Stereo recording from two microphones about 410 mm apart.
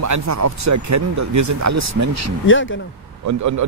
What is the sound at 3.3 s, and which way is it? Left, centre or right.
Speech, right.